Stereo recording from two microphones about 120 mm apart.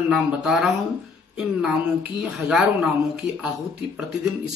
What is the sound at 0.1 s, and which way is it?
Speech, 5° right (ahead or behind).